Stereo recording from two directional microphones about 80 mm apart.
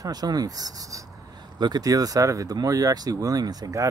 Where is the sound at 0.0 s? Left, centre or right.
Right.